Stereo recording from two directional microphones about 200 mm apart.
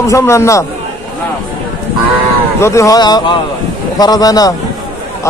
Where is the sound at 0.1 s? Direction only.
15° left (ahead or behind).